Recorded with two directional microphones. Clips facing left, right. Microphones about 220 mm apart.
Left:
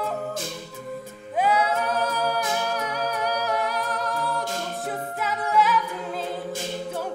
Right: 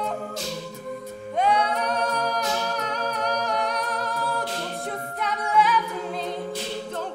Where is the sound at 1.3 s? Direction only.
5° left (ahead or behind).